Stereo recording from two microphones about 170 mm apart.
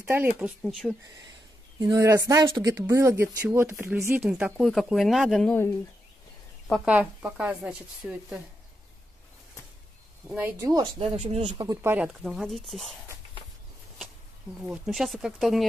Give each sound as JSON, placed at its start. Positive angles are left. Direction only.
{"t": 0.0, "sound": "speech", "side_deg": -15}
{"t": 1.8, "sound": "speech", "side_deg": -20}
{"t": 6.8, "sound": "speech", "side_deg": -10}
{"t": 10.3, "sound": "a woman's voice", "side_deg": -15}
{"t": 11.0, "sound": "speech", "side_deg": -35}
{"t": 11.5, "sound": "speech", "side_deg": -20}
{"t": 14.6, "sound": "speech", "side_deg": -5}